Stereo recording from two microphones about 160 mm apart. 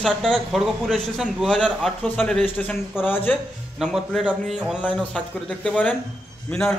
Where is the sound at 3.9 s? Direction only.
5° right (ahead or behind).